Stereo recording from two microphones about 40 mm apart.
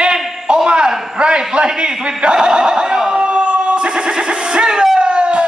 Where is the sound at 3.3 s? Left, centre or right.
Right.